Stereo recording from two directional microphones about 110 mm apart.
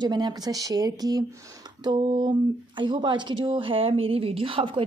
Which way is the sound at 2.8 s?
45° right (ahead or behind).